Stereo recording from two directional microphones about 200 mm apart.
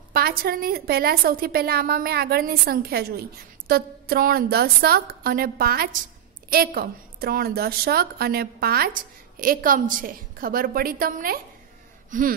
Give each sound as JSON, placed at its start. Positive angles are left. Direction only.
{"t": 0.1, "sound": "a woman's voice", "side_deg": -50}